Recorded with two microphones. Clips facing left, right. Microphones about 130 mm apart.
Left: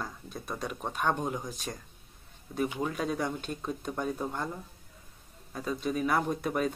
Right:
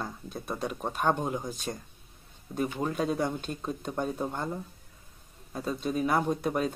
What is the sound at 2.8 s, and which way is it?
Speech, 30° right (ahead or behind).